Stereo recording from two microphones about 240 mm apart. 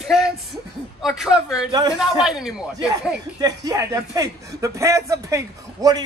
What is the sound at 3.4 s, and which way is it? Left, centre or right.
A man's voice, centre.